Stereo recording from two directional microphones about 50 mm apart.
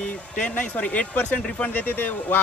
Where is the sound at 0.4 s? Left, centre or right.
Left.